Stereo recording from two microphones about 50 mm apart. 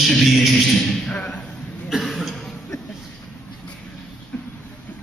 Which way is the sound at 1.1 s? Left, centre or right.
Left.